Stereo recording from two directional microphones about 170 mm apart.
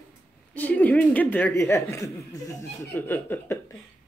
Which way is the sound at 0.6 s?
10° left (ahead or behind).